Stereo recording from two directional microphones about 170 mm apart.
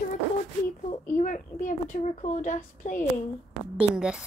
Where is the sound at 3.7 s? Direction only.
5° right (ahead or behind).